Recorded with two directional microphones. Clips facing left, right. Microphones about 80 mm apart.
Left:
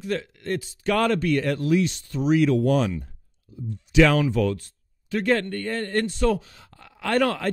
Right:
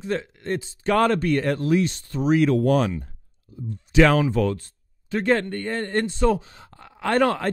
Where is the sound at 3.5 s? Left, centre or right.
Right.